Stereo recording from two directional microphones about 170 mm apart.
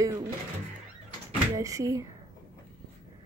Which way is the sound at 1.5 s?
20° right (ahead or behind).